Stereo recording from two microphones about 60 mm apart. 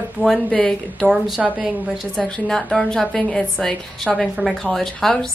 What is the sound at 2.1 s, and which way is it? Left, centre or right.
A woman's voice, centre.